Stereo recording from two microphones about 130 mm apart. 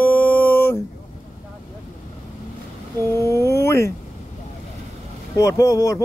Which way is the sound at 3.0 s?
20° left (ahead or behind).